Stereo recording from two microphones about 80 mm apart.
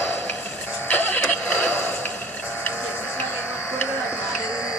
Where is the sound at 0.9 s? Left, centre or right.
Left.